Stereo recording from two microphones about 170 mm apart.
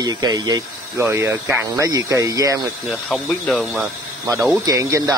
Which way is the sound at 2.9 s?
Centre (ahead or behind).